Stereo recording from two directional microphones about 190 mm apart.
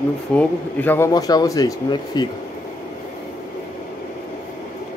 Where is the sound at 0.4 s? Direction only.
10° left (ahead or behind).